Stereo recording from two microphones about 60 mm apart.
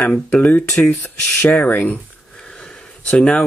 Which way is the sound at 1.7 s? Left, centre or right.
Left.